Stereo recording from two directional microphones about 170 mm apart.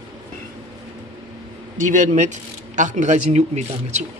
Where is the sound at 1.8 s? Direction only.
45° right (ahead or behind).